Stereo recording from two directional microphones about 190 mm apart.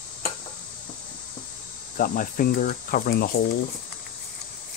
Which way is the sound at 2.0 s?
45° left (ahead or behind).